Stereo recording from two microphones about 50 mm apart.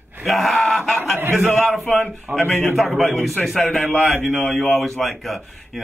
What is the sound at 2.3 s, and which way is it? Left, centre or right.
Speech, centre.